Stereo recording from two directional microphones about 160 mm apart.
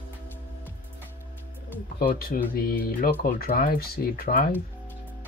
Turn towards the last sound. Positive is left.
turn(degrees=65)  # may be behind; listen again after turning